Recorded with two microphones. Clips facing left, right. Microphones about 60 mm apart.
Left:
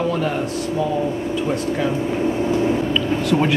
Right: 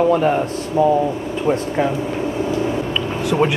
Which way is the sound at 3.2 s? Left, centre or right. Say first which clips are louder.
Right 3 dB; centre.